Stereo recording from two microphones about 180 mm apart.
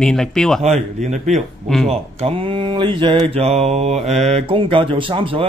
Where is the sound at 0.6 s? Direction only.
40° right (ahead or behind).